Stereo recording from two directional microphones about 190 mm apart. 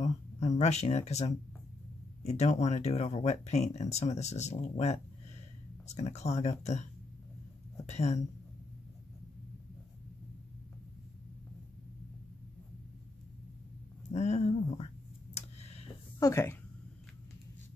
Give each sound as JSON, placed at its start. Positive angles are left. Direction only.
{"t": 0.6, "sound": "speech", "side_deg": 35}
{"t": 7.9, "sound": "speech", "side_deg": 35}
{"t": 14.1, "sound": "a sound", "side_deg": 35}
{"t": 16.2, "sound": "speech", "side_deg": 15}